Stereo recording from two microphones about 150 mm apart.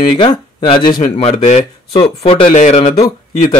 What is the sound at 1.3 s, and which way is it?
Speech, 50° left (ahead or behind).